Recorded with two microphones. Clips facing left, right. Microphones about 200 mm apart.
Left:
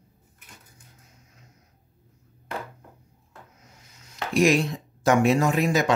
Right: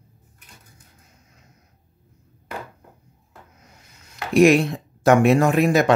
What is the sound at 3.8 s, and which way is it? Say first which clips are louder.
Speech: even; 60° right (ahead or behind).